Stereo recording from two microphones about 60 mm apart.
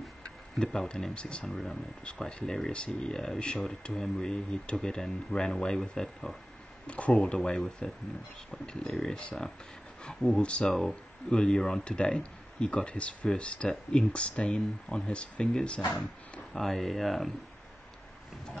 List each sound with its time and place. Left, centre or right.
0.2 s speech: centre
1.4 s speech: centre
6.9 s speech: left
16.5 s speech: centre